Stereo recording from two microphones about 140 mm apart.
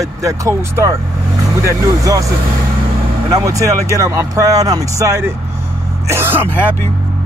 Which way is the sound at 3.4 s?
20° right (ahead or behind).